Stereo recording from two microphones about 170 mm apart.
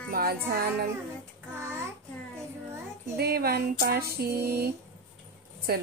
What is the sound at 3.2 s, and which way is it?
A woman's voice, 65° right (ahead or behind).